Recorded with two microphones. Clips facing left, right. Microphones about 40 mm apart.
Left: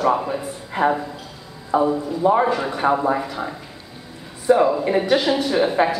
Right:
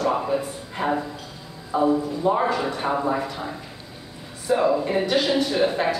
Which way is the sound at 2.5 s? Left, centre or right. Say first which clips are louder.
Left 4 dB; centre.